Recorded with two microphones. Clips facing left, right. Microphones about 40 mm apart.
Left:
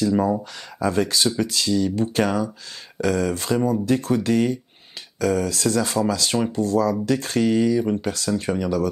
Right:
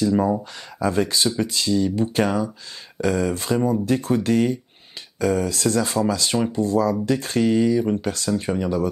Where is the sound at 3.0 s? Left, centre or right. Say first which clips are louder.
Even; right.